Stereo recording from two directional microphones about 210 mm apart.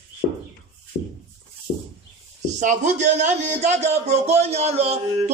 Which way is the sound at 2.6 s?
35° right (ahead or behind).